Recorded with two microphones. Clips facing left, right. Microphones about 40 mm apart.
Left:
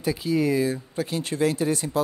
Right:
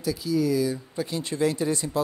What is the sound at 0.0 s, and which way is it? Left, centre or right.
Speech, left.